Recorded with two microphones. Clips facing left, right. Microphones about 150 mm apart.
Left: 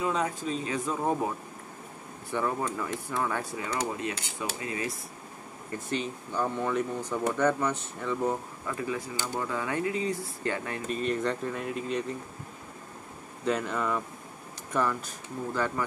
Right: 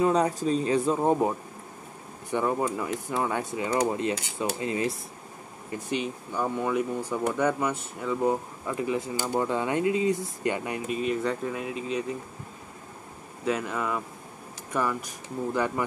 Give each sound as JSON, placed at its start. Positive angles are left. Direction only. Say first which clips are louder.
{"t": 0.0, "sound": "speech", "louder": "right 6 dB", "side_deg": -35}
{"t": 2.3, "sound": "speech", "louder": "right 4 dB", "side_deg": -15}
{"t": 5.7, "sound": "speech", "louder": "right 2 dB", "side_deg": -10}
{"t": 13.5, "sound": "speech", "louder": "even", "side_deg": -5}